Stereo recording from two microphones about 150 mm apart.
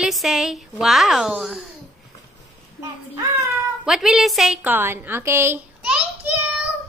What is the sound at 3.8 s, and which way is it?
A woman's voice, 5° right (ahead or behind).